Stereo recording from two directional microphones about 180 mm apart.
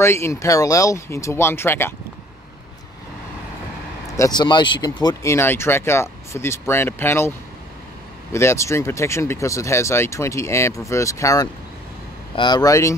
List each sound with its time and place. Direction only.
0.0 s speech: 15° left (ahead or behind)
4.2 s speech: 25° left (ahead or behind)